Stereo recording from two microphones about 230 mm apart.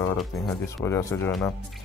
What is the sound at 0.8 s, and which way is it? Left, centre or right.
Speech, centre.